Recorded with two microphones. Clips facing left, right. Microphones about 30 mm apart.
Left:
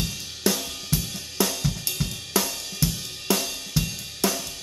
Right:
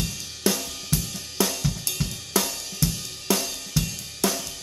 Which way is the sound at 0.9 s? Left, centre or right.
Centre.